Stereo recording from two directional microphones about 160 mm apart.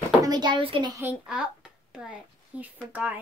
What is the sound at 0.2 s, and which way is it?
Speech, 25° right (ahead or behind).